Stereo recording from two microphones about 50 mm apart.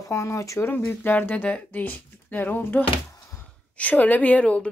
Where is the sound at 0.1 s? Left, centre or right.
Left.